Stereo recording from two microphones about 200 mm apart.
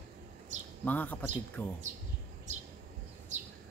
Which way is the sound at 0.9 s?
10° left (ahead or behind).